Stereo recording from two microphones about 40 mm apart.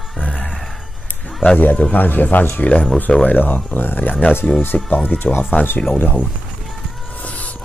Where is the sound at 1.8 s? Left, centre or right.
Left.